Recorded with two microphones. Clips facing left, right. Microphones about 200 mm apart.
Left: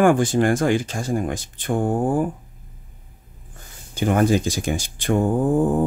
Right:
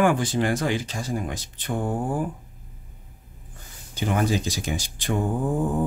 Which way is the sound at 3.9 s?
50° left (ahead or behind).